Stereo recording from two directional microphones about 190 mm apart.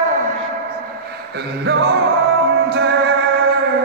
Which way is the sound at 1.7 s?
60° right (ahead or behind).